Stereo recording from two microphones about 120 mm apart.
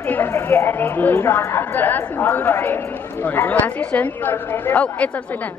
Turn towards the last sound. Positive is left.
turn(degrees=10)  # may be behind; listen again after turning